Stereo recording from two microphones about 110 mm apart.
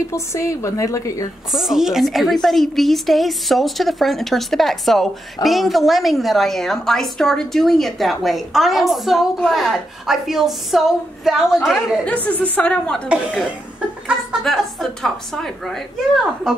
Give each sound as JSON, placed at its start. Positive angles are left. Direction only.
{"t": 0.1, "sound": "a woman's voice", "side_deg": 25}
{"t": 1.5, "sound": "speech", "side_deg": 0}
{"t": 12.1, "sound": "a woman's voice", "side_deg": 15}
{"t": 13.1, "sound": "speech", "side_deg": -5}
{"t": 14.4, "sound": "speech", "side_deg": 5}